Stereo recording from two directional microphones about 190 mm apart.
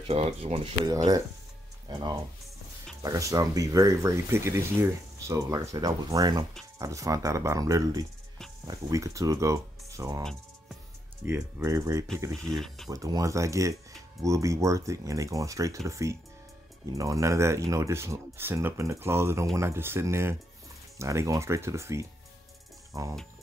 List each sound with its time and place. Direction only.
0.0 s speech: 30° right (ahead or behind)
0.8 s speech: 20° right (ahead or behind)
11.2 s speech: 15° right (ahead or behind)
12.3 s speech: centre (ahead or behind)
12.9 s speech: 15° right (ahead or behind)